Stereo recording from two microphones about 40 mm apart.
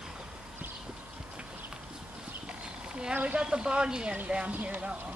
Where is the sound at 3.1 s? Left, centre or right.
Right.